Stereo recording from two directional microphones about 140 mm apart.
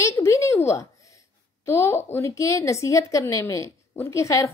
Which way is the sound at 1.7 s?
20° left (ahead or behind).